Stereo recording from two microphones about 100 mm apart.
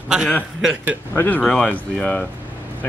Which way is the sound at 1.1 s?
15° left (ahead or behind).